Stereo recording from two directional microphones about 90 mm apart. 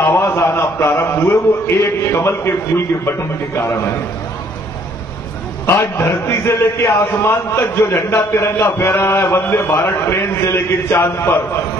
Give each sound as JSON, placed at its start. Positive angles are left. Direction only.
{"t": 0.0, "sound": "a man's voice", "side_deg": 30}
{"t": 5.7, "sound": "a man's voice", "side_deg": 30}